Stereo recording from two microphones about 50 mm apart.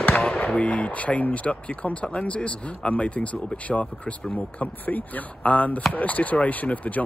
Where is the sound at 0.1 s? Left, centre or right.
Centre.